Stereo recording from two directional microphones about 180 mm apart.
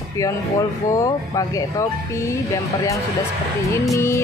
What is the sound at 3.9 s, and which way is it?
Speech, 15° left (ahead or behind).